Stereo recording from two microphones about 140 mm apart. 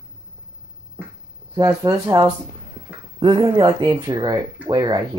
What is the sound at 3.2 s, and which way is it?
Speech, 35° right (ahead or behind).